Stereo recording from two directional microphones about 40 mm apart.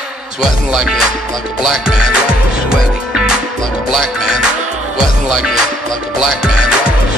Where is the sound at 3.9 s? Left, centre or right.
Centre.